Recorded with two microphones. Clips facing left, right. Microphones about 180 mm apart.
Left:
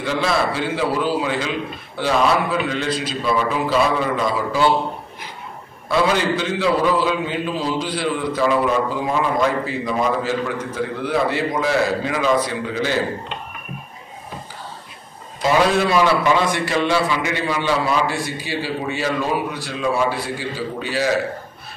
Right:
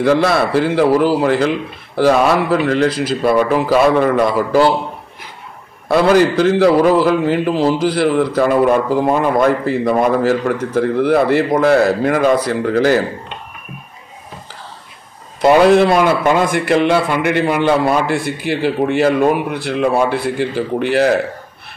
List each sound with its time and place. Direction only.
0.0 s a man's voice: 65° right (ahead or behind); by 1.5 s 80° right
2.1 s a man's voice: 65° right (ahead or behind)
5.9 s a man's voice: 55° right (ahead or behind)
7.0 s a man's voice: 80° right; by 12.9 s 60° right (ahead or behind)
15.4 s a man's voice: 55° right (ahead or behind)